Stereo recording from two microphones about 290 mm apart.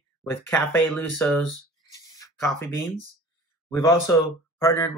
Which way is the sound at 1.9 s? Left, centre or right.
Centre.